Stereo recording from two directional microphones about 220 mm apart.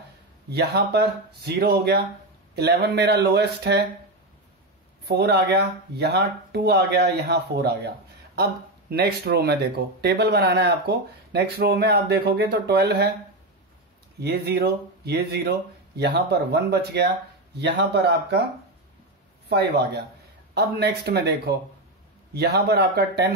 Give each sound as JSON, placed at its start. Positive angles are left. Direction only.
{"t": 0.5, "sound": "speech", "side_deg": -45}
{"t": 5.0, "sound": "speech", "side_deg": -50}
{"t": 8.9, "sound": "speech", "side_deg": -45}
{"t": 14.2, "sound": "speech", "side_deg": -45}
{"t": 19.5, "sound": "speech", "side_deg": -50}